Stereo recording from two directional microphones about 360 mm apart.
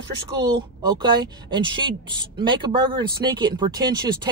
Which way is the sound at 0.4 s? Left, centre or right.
Centre.